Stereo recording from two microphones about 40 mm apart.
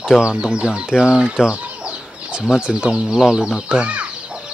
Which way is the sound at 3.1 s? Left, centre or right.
Centre.